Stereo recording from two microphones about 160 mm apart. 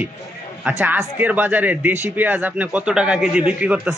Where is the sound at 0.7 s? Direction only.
10° right (ahead or behind).